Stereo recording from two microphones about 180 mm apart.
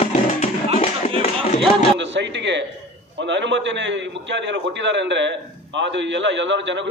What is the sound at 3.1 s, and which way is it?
A man's voice, 80° right.